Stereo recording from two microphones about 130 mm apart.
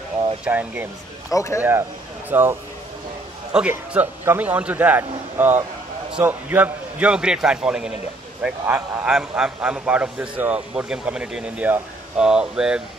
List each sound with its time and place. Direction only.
0.5 s a man's voice: 10° right (ahead or behind)
1.3 s speech: 20° left (ahead or behind)
1.6 s speech: 15° right (ahead or behind)
3.5 s a man's voice: 10° right (ahead or behind)